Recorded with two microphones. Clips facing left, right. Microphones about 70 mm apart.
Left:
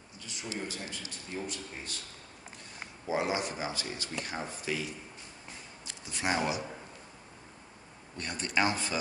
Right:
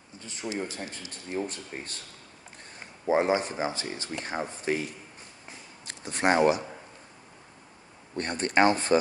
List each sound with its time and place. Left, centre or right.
0.6 s speech: right
3.1 s speech: right
5.9 s speech: right
8.2 s speech: right